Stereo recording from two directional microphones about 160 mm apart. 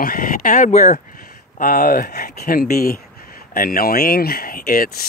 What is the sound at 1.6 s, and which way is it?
Speech, 65° left (ahead or behind).